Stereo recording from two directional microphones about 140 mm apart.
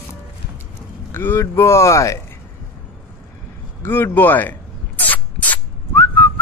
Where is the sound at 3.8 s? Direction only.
15° left (ahead or behind).